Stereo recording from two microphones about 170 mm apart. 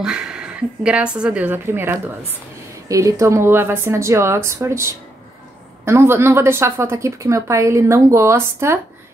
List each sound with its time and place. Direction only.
0.0 s a woman's voice: 5° right (ahead or behind)